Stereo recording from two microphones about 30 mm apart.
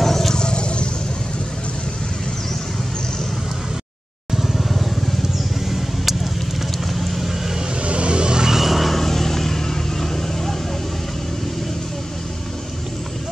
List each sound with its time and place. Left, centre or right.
0.0 s vehicle: centre
0.3 s vehicle: left
4.3 s vehicle: centre
5.7 s a sound: centre
6.9 s vehicle: centre
7.8 s vehicle: right
8.5 s vehicle: centre
8.9 s vehicle: centre